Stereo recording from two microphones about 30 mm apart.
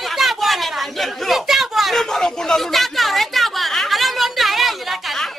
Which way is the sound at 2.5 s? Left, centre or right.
Centre.